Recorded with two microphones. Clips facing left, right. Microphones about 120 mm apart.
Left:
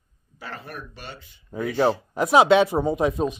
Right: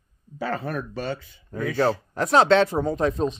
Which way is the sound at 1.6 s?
10° left (ahead or behind).